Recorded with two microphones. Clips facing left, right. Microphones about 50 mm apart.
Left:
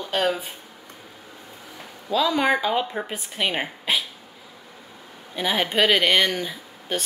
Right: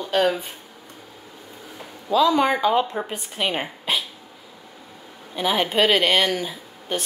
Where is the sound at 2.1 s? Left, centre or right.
Centre.